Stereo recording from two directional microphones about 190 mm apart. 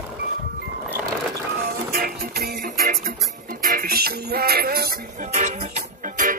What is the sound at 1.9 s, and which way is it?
Music, 50° right (ahead or behind).